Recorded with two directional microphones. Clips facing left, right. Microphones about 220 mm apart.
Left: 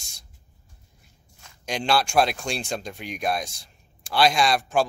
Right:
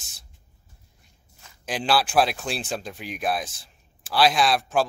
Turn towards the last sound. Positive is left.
turn(degrees=0)  # may be behind; listen again after turning